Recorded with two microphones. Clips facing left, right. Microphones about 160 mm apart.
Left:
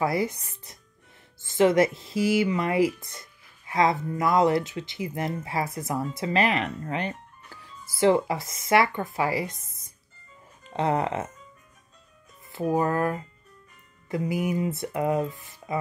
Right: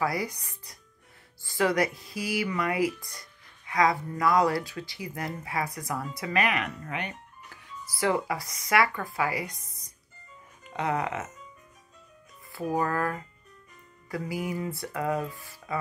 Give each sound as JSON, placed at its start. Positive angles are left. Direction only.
{"t": 0.0, "sound": "speech", "side_deg": 25}
{"t": 12.5, "sound": "speech", "side_deg": 25}